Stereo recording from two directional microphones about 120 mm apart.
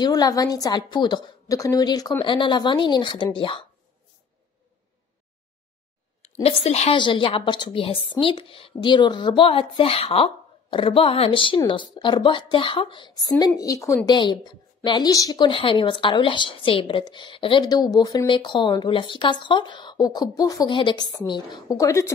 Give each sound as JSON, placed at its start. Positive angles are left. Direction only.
{"t": 0.0, "sound": "a woman's voice", "side_deg": 30}
{"t": 6.4, "sound": "a woman's voice", "side_deg": 55}
{"t": 7.0, "sound": "a woman's voice", "side_deg": 45}
{"t": 14.1, "sound": "a woman's voice", "side_deg": 40}
{"t": 20.7, "sound": "a woman's voice", "side_deg": 40}